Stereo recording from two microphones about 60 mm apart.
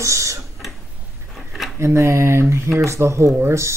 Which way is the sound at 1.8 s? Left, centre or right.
Right.